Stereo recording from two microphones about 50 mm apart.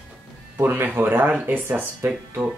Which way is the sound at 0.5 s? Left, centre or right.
Right.